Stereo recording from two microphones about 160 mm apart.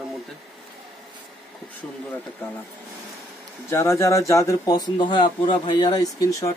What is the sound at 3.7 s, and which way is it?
Speech, 15° left (ahead or behind).